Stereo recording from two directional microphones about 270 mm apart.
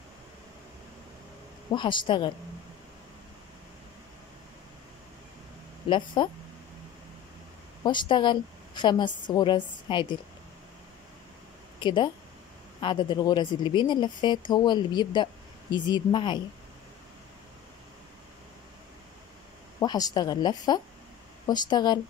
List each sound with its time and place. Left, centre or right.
1.7 s speech: centre
5.9 s speech: centre
7.8 s speech: centre
11.8 s speech: centre
19.8 s speech: centre